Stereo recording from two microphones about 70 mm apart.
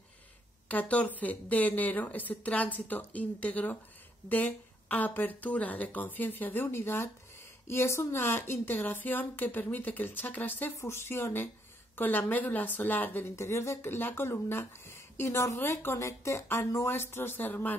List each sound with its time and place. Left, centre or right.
0.7 s speech: left
10.8 s speech: left
13.4 s speech: left